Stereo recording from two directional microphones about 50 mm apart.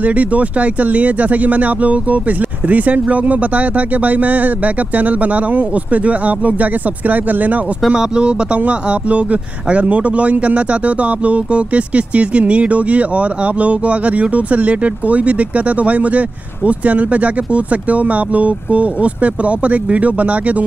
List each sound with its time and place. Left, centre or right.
0.0 s speech: right
7.9 s speech: centre